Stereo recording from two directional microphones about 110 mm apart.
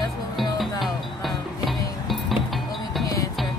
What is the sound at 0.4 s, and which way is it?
Music, centre (ahead or behind).